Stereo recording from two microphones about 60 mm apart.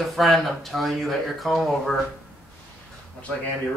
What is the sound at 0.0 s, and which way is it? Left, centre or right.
A woman's voice, centre.